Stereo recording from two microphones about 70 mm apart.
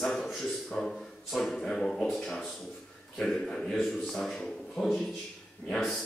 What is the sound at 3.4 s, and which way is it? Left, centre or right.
A man's voice, centre.